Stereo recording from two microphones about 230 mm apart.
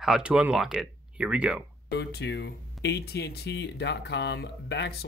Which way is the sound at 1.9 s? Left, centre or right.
Left.